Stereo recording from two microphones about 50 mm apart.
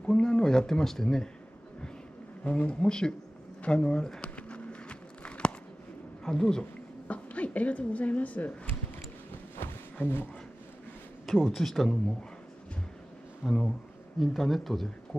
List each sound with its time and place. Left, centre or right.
0.0 s speech: centre
2.4 s speech: left
4.2 s a sound: left
6.2 s speech: centre
7.1 s speech: left
9.6 s a sound: left
10.0 s speech: left
11.3 s speech: centre
13.4 s speech: centre